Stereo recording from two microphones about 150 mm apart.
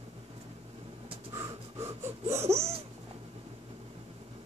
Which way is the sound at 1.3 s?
20° right (ahead or behind).